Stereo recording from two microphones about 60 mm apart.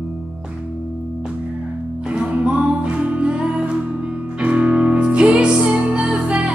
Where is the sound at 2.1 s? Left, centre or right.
Centre.